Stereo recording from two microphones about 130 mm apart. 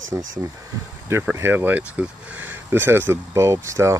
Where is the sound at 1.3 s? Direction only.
15° right (ahead or behind).